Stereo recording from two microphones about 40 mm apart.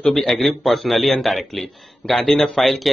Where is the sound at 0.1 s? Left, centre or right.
Centre.